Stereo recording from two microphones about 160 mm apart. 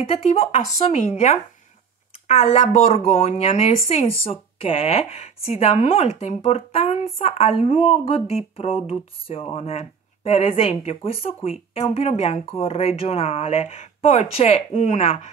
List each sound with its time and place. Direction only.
0.1 s speech: 45° left (ahead or behind)